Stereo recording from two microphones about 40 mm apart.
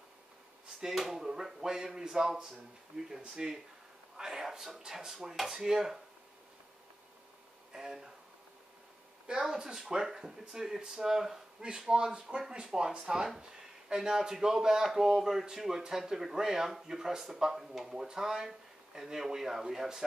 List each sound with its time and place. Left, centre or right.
0.9 s speech: centre
2.9 s speech: right
3.3 s speech: centre
7.7 s speech: centre
9.5 s speech: centre